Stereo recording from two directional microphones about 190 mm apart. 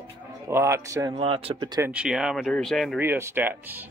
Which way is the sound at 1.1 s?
30° right (ahead or behind).